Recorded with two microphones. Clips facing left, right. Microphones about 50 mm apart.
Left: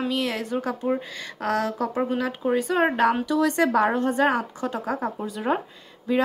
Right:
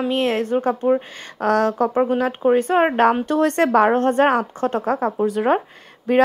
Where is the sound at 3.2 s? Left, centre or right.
Right.